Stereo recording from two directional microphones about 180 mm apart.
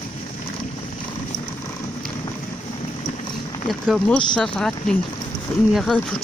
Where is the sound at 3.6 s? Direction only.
Centre (ahead or behind).